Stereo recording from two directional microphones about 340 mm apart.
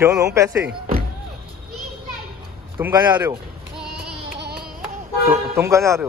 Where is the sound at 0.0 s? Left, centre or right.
Centre.